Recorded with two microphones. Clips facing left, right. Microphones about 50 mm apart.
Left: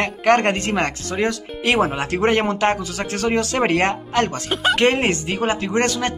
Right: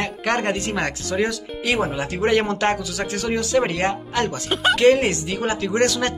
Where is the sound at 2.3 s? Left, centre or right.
Left.